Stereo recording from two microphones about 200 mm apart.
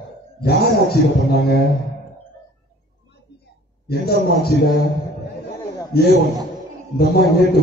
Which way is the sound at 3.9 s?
50° left (ahead or behind).